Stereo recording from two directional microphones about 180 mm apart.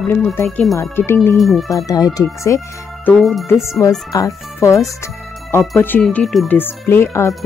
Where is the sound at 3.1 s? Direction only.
Centre (ahead or behind).